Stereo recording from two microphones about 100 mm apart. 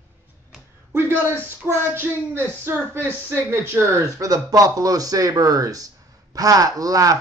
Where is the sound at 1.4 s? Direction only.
25° right (ahead or behind).